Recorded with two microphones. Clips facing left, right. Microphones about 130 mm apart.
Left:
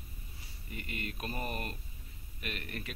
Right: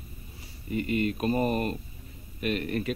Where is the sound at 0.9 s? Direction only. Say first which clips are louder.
Right 15 dB; 40° left (ahead or behind).